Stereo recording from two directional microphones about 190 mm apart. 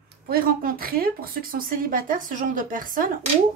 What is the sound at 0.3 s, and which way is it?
A woman's voice, 50° right (ahead or behind).